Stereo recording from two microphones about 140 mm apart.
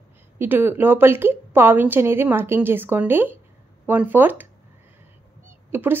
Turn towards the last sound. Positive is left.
turn(degrees=-15)  # may be behind; listen again after turning